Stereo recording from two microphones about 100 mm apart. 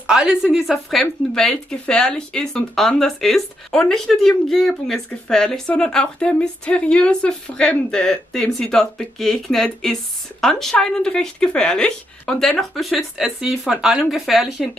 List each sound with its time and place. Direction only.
0.0 s speech: 5° right (ahead or behind)
1.3 s speech: 5° left (ahead or behind)